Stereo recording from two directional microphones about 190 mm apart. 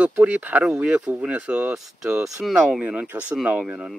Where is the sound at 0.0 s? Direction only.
5° right (ahead or behind).